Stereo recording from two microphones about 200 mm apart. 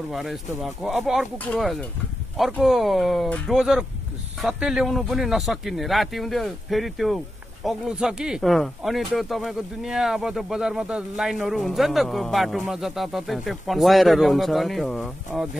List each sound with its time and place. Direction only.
0.1 s speech: centre (ahead or behind)